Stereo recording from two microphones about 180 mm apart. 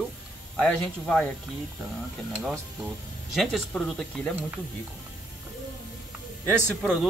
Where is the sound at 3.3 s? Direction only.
Centre (ahead or behind).